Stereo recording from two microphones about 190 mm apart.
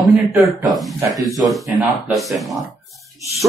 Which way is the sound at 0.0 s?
20° right (ahead or behind).